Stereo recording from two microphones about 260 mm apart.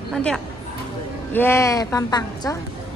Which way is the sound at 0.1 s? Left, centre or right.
Centre.